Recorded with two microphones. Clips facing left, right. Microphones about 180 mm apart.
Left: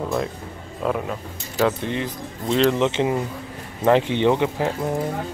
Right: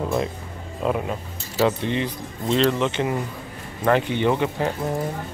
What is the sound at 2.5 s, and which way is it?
Speech, 15° left (ahead or behind).